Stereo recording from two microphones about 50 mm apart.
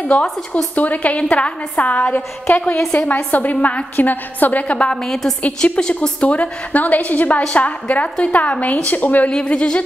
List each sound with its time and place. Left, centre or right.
0.0 s a woman's voice: left
5.0 s a woman's voice: centre
6.2 s a woman's voice: left
9.3 s a woman's voice: left